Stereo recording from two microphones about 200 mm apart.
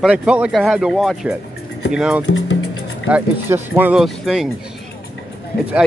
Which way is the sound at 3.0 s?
10° right (ahead or behind).